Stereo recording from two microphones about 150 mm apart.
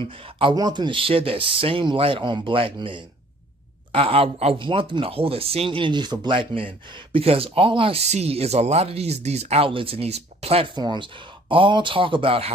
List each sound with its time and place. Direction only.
0.4 s speech: 30° right (ahead or behind)